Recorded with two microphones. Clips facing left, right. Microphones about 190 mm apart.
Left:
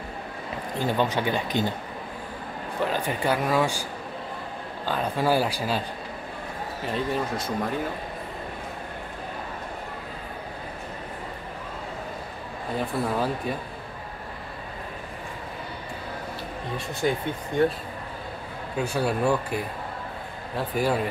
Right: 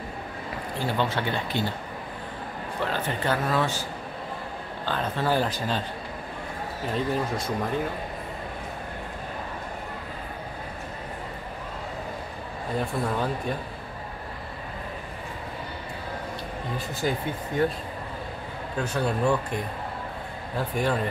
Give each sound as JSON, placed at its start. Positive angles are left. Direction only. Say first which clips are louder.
{"t": 0.7, "sound": "speech", "louder": "left 3 dB", "side_deg": 15}
{"t": 2.8, "sound": "speech", "louder": "left 2 dB", "side_deg": 10}
{"t": 4.8, "sound": "speech", "louder": "left 2 dB", "side_deg": 10}
{"t": 6.9, "sound": "speech", "louder": "even", "side_deg": 0}
{"t": 12.7, "sound": "speech", "louder": "left 1 dB", "side_deg": 5}
{"t": 17.0, "sound": "speech", "louder": "left 2 dB", "side_deg": 0}
{"t": 18.8, "sound": "speech", "louder": "left 1 dB", "side_deg": 10}